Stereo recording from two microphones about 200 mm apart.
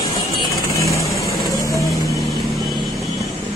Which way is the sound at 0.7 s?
15° left (ahead or behind).